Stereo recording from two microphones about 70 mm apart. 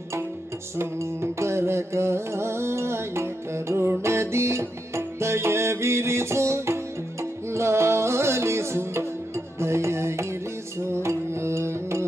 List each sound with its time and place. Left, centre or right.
0.7 s music: right